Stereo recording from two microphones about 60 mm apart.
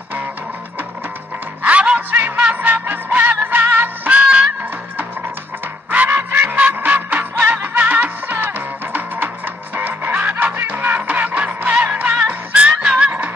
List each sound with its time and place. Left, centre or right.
1.6 s music: right
5.9 s music: right